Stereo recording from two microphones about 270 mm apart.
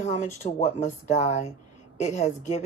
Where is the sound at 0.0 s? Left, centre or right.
Left.